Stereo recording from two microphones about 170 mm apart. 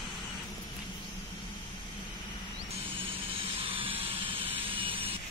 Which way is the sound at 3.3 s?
30° right (ahead or behind).